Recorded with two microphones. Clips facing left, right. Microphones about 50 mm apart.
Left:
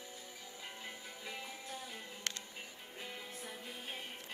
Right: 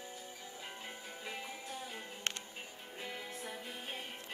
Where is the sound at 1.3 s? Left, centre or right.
Right.